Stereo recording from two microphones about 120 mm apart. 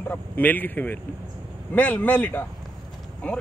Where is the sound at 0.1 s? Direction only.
15° left (ahead or behind).